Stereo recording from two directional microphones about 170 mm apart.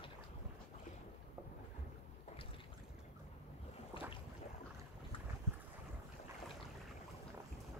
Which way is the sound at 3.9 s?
30° left (ahead or behind).